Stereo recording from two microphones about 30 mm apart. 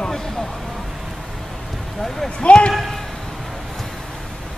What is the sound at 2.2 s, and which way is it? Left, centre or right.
Speech, left.